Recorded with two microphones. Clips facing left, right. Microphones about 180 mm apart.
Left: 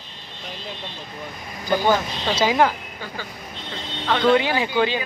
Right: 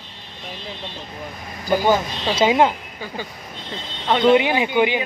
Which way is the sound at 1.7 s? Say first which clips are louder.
Right 2 dB; 10° right (ahead or behind).